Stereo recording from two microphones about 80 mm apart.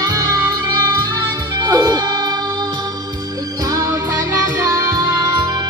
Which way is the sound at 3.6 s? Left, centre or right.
Right.